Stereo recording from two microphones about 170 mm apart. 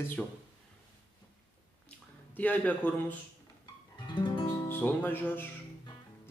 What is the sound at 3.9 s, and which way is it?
Guitar, 25° left (ahead or behind).